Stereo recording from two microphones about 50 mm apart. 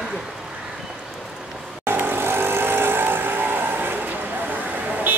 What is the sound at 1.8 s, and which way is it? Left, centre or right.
Vehicle, right.